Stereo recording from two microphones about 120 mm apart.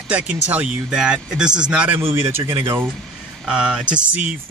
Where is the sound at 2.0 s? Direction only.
20° right (ahead or behind).